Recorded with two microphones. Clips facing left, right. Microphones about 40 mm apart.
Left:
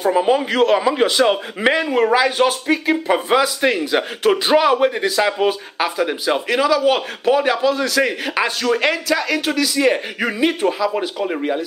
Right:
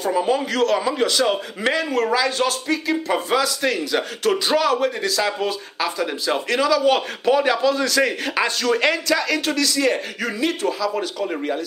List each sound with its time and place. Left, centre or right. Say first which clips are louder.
0.0 s a man's voice: left 4 dB; left